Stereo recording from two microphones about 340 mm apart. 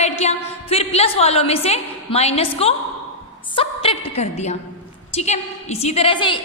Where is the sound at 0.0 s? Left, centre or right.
Centre.